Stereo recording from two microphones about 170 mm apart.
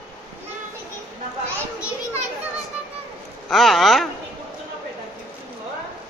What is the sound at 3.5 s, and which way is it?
Speech, centre (ahead or behind).